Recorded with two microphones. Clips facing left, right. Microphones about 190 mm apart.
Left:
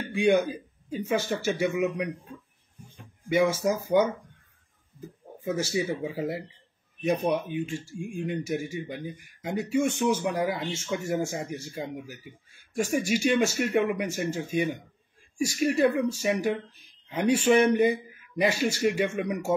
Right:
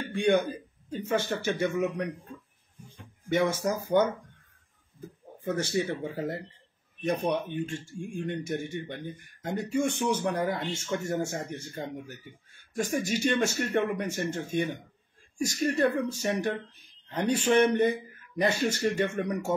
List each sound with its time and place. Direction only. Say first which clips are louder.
0.1 s speech: left 2 dB; 10° left (ahead or behind)
3.3 s speech: left 3 dB; 10° left (ahead or behind)
5.4 s speech: left 1 dB; 10° left (ahead or behind)